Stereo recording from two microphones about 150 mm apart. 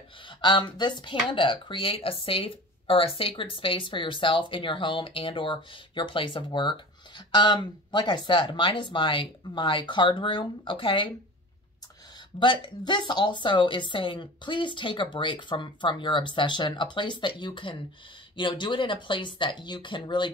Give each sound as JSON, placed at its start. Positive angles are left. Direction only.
{"t": 0.4, "sound": "a woman's voice", "side_deg": 30}
{"t": 12.4, "sound": "a woman's voice", "side_deg": 30}